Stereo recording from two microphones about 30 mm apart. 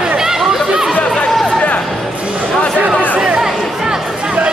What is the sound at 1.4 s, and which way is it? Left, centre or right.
Music, left.